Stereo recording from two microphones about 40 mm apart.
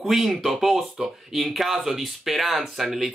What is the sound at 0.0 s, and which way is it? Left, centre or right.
Speech, centre.